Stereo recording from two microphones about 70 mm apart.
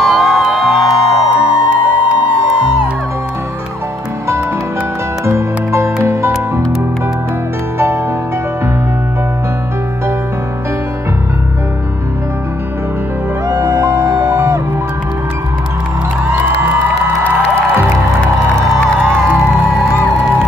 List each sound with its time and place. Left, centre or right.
0.0 s music: centre
1.3 s music: centre
5.2 s music: right
13.6 s music: right